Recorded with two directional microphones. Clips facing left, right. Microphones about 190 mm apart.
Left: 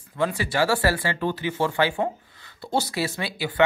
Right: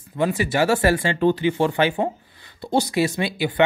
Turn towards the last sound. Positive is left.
turn(degrees=-20)  # may be behind; listen again after turning